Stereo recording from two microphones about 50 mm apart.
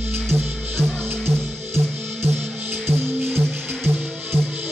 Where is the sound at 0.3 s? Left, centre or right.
Right.